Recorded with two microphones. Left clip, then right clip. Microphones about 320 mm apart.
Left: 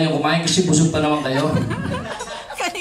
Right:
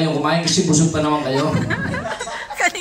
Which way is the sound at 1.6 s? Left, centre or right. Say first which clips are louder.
Right 4 dB; centre.